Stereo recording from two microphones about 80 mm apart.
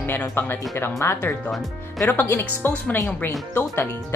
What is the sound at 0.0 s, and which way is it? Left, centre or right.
Speech, left.